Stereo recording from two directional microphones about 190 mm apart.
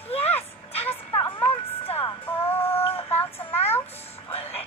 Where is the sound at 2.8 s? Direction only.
30° left (ahead or behind).